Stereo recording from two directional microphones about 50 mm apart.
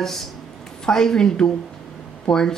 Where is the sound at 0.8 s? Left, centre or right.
Centre.